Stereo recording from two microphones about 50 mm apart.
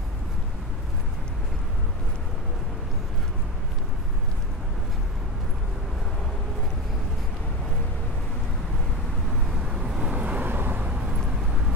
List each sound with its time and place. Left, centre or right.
9.5 s vehicle: centre; by 10.8 s right
10.8 s vehicle: centre